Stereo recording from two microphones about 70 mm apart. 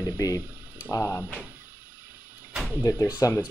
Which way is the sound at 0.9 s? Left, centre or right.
Left.